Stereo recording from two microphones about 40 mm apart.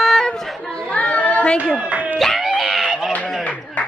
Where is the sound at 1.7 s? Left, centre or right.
Right.